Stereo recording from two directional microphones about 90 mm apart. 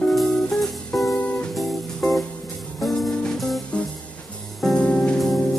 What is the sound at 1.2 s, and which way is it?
Music, 15° left (ahead or behind).